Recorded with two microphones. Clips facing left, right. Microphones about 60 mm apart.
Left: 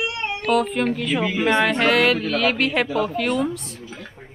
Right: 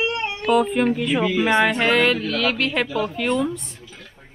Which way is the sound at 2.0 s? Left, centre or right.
Centre.